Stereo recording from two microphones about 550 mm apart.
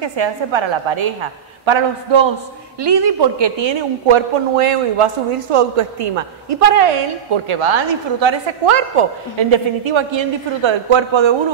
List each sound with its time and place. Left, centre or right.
0.0 s a woman's voice: right
7.4 s a woman's voice: right